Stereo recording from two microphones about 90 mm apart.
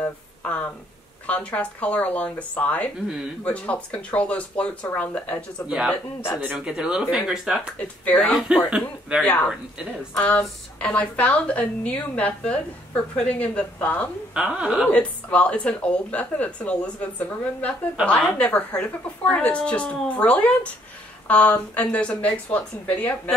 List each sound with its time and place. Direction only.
0.0 s a sound: 15° left (ahead or behind)
1.2 s a woman's voice: 15° left (ahead or behind)
5.7 s speech: 5° right (ahead or behind)
8.0 s a woman's voice: 15° left (ahead or behind)
8.5 s speech: 10° right (ahead or behind)
9.2 s a woman's voice: 20° left (ahead or behind)
14.3 s speech: 10° right (ahead or behind)
14.9 s a woman's voice: 15° left (ahead or behind)